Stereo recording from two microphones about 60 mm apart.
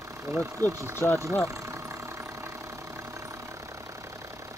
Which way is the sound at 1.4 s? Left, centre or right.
Right.